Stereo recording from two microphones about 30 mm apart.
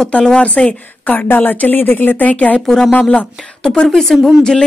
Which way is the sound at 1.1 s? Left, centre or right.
Left.